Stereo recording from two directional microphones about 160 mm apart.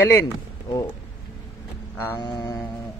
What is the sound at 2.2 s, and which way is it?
Mantra, 25° left (ahead or behind).